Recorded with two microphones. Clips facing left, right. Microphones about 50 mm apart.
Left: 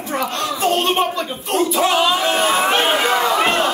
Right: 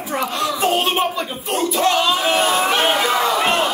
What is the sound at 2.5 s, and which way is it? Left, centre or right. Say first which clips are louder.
Speech: left 1 dB; left.